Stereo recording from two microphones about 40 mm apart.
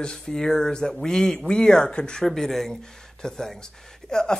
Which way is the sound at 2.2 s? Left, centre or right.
Centre.